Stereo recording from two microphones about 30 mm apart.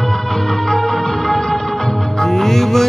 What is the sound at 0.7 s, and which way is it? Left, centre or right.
Music, centre.